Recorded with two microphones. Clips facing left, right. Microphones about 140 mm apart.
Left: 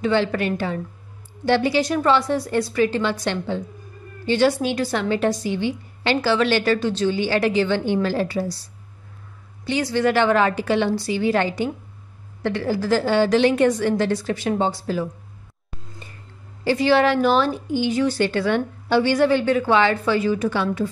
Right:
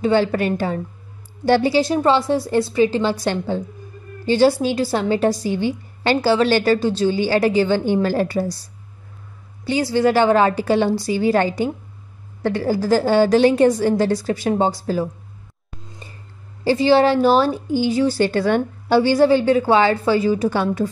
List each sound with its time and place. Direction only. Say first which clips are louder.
0.0 s a woman's voice: right 3 dB; 40° right (ahead or behind)
9.7 s a woman's voice: right 3 dB; 35° right (ahead or behind)
16.6 s a woman's voice: right 3 dB; 30° right (ahead or behind)